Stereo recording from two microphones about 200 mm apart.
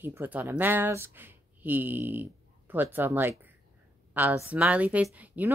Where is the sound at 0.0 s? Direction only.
10° right (ahead or behind).